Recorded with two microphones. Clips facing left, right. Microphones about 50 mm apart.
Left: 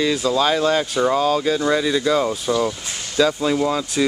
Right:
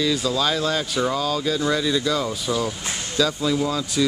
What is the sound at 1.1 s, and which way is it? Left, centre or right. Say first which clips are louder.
Speech: left 6 dB; left.